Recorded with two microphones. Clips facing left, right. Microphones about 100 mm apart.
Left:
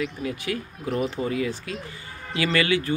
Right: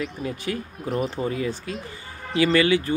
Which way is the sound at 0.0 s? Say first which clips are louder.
Even; 30° right (ahead or behind).